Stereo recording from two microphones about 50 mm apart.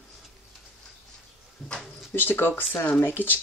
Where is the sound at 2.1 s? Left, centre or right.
Left.